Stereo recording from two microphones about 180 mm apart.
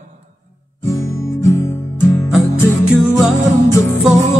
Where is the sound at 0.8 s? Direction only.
15° left (ahead or behind).